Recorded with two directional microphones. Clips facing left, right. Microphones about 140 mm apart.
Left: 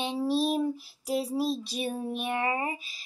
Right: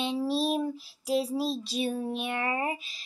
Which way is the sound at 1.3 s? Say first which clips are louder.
Left 1 dB; 10° left (ahead or behind).